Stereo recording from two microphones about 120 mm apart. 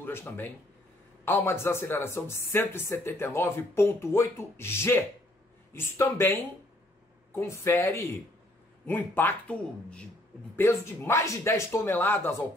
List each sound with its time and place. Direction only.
0.0 s speech: 20° left (ahead or behind)
7.3 s speech: 25° left (ahead or behind)